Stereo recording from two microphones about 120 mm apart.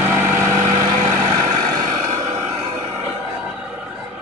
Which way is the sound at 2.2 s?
25° right (ahead or behind).